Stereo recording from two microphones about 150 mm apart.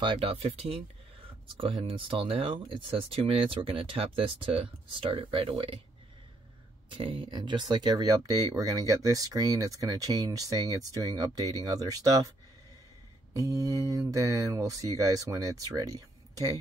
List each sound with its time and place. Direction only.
0.0 s speech: 35° right (ahead or behind)
6.9 s speech: 35° right (ahead or behind)
13.3 s speech: 20° right (ahead or behind)